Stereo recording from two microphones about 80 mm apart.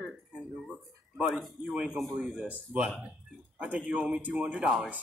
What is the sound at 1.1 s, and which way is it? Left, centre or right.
Speech, centre.